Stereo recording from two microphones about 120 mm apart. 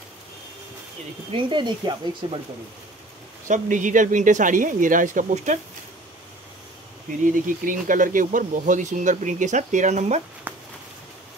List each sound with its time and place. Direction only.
1.3 s speech: 40° right (ahead or behind)
3.4 s speech: 90° right
7.2 s speech: 90° right; by 10.2 s 70° right (ahead or behind)
10.5 s a sound: 15° right (ahead or behind)